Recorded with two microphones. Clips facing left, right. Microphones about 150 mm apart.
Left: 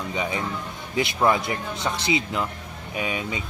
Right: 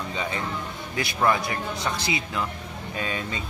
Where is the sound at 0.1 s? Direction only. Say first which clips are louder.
Left 3 dB; 15° left (ahead or behind).